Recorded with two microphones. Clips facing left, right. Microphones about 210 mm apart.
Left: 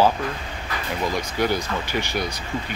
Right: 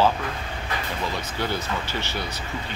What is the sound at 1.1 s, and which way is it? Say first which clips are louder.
Speech: left 7 dB; 15° left (ahead or behind).